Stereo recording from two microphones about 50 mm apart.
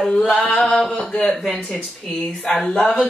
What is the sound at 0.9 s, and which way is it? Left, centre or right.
Speech, centre.